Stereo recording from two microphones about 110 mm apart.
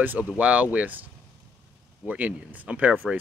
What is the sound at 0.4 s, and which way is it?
Speech, 15° right (ahead or behind).